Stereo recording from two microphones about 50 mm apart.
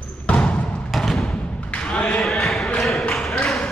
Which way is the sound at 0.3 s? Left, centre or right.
Left.